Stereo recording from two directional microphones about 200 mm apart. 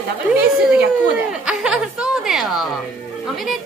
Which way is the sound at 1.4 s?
5° right (ahead or behind).